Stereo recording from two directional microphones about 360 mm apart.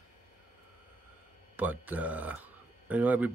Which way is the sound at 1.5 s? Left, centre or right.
Centre.